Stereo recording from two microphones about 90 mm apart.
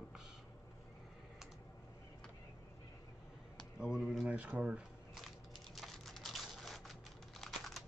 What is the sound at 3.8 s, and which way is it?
Speech, 5° right (ahead or behind).